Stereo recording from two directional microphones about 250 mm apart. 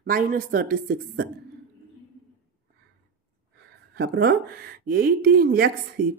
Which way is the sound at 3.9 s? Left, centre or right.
Right.